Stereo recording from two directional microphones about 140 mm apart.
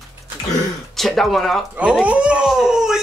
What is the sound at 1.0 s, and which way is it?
Speech, centre (ahead or behind).